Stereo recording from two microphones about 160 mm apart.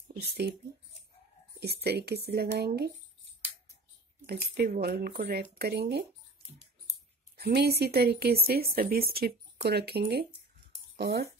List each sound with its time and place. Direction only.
0.2 s speech: 90° right
1.6 s speech: 90° right
4.7 s speech: 80° right
7.3 s speech: 85° right